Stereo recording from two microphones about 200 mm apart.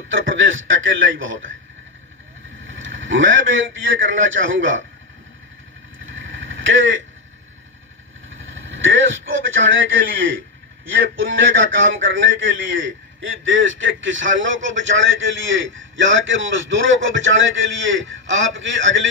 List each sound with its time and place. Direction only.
0.1 s a man's voice: 75° right (ahead or behind)
2.7 s a man's voice: 70° right (ahead or behind)
6.0 s vehicle: 70° right (ahead or behind)
8.5 s a man's voice: 70° right (ahead or behind)